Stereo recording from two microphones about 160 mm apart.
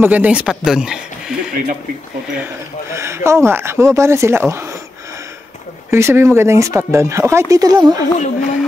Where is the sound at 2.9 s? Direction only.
15° right (ahead or behind).